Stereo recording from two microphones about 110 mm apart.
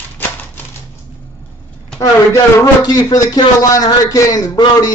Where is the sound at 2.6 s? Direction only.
30° left (ahead or behind).